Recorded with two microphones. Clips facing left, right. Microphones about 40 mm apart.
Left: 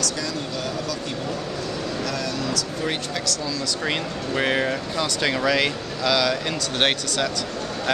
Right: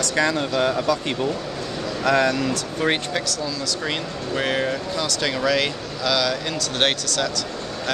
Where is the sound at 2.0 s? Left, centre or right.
Right.